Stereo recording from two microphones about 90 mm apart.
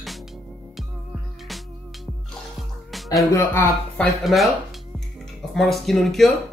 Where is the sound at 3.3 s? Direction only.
35° left (ahead or behind).